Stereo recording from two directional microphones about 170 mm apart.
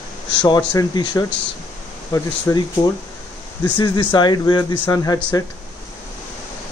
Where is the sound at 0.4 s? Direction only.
25° left (ahead or behind).